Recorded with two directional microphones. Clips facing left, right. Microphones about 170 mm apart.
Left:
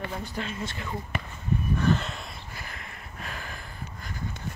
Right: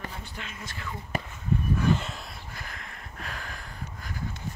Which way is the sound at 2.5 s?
5° left (ahead or behind).